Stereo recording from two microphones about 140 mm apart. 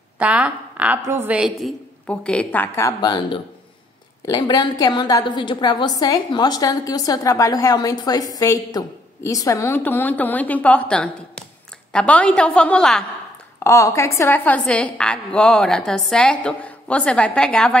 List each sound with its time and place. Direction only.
0.2 s a woman's voice: 10° right (ahead or behind)
13.7 s a woman's voice: 20° left (ahead or behind)